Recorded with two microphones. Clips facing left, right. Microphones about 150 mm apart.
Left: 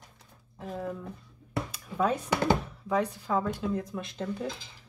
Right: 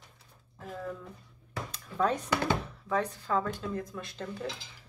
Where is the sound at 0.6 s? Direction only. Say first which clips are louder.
Left 3 dB; 20° left (ahead or behind).